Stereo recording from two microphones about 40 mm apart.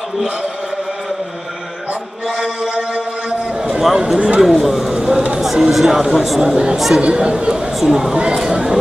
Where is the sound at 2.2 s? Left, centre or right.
Centre.